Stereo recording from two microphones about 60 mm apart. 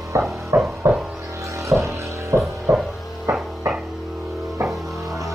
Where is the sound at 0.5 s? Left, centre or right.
Right.